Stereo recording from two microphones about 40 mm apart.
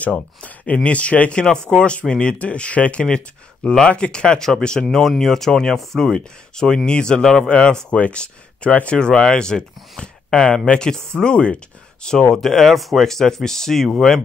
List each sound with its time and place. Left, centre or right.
0.0 s speech: left
1.3 s speech: centre
7.4 s speech: left; by 13.8 s centre